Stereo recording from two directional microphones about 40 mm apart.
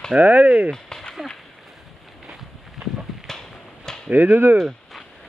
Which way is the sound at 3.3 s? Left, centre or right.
Centre.